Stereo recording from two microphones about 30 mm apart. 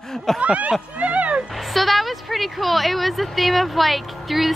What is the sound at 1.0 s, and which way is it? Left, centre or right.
Music, right.